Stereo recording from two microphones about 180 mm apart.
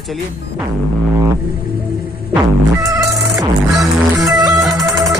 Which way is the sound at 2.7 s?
20° right (ahead or behind).